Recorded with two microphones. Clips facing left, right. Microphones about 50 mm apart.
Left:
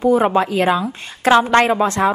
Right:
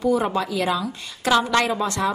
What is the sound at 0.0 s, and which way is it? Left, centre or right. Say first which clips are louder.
A woman's voice: left 6 dB; left.